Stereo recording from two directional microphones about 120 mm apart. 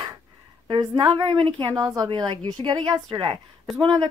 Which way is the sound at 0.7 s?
40° right (ahead or behind).